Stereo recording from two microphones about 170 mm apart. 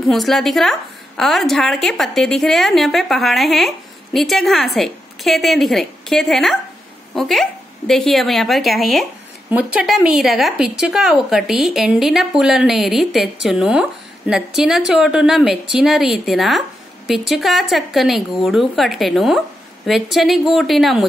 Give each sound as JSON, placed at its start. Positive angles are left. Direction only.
{"t": 0.1, "sound": "speech", "side_deg": 0}